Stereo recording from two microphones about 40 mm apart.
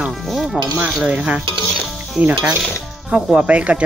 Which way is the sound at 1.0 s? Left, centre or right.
Right.